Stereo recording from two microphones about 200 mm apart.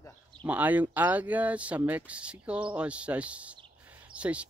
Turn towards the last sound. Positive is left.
turn(degrees=-5)  # may be behind; listen again after turning